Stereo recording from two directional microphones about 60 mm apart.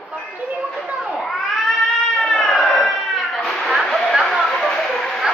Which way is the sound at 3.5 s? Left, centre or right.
Centre.